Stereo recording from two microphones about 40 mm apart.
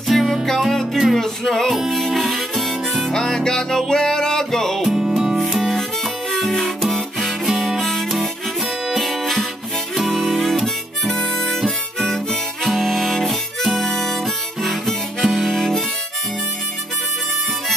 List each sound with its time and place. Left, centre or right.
0.1 s music: centre
1.7 s music: centre
2.0 s harmonica: centre
3.1 s music: centre
6.3 s music: centre
9.9 s harmonica: centre